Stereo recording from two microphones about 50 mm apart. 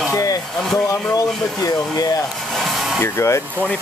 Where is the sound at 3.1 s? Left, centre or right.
Left.